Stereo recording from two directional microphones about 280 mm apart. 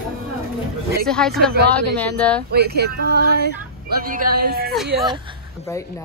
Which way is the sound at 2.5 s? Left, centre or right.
Right.